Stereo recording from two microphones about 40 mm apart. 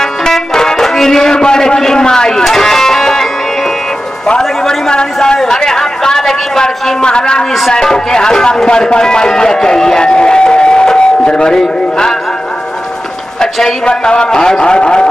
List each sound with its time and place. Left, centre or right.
0.0 s music: centre
4.4 s a sound: centre
7.7 s a man's voice: centre
13.4 s a man's voice: centre
13.8 s a man's voice: left